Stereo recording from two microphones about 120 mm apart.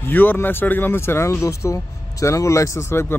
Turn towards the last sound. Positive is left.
turn(degrees=20)  # may be behind; listen again after turning